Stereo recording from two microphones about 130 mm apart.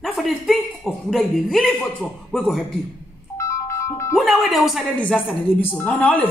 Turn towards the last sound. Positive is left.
turn(degrees=10)  # may be behind; listen again after turning